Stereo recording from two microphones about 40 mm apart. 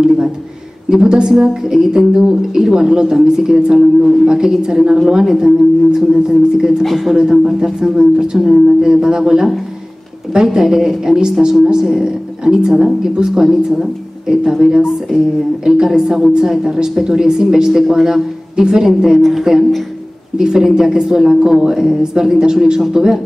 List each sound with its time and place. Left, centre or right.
0.8 s a woman's voice: right
6.8 s speech: centre
7.2 s speech: centre
14.9 s speech: centre
15.6 s speech: centre